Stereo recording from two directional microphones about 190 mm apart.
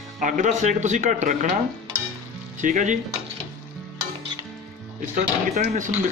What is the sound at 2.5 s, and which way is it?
Speech, 40° right (ahead or behind).